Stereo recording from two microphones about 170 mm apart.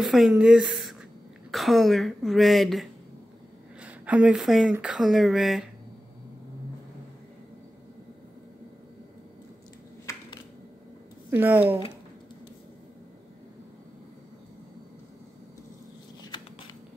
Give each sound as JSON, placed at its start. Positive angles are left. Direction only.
{"t": 0.0, "sound": "speech", "side_deg": 0}
{"t": 10.1, "sound": "a sound", "side_deg": 20}
{"t": 11.2, "sound": "speech", "side_deg": -10}